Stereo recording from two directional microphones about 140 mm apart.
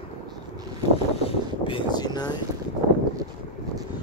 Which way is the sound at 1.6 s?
35° left (ahead or behind).